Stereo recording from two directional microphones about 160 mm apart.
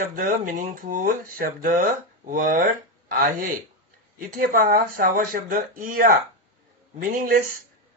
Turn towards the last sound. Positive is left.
turn(degrees=-60)  # may be behind; listen again after turning